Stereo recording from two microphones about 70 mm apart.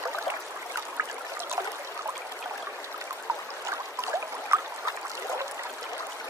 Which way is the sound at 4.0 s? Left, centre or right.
Right.